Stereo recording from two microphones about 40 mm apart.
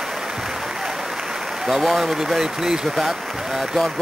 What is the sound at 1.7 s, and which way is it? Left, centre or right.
Speech, centre.